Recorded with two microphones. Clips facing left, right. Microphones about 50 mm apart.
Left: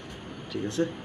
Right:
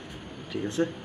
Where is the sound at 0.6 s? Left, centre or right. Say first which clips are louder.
Right 1 dB; centre.